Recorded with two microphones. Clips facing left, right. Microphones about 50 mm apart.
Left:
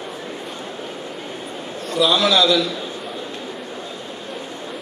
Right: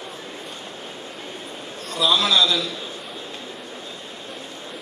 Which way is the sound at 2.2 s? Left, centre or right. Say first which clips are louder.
Left 4 dB; left.